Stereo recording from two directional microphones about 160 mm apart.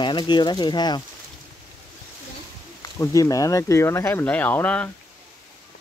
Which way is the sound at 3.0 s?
20° left (ahead or behind).